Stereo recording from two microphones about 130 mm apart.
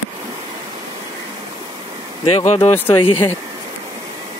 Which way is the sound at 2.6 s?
15° left (ahead or behind).